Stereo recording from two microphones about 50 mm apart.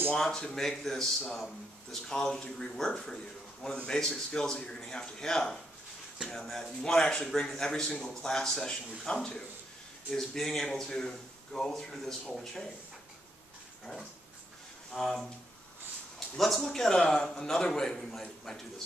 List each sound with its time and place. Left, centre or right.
0.1 s a man's voice: centre
6.2 s speech: centre
6.6 s a man's voice: centre
14.9 s speech: centre
16.3 s a man's voice: centre